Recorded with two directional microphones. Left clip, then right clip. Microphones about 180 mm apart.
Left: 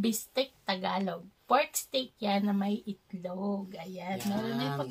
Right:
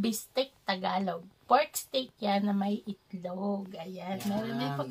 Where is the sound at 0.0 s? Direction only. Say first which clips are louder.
Even; 5° right (ahead or behind).